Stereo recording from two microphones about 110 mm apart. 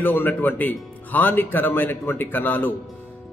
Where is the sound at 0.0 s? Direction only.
15° left (ahead or behind).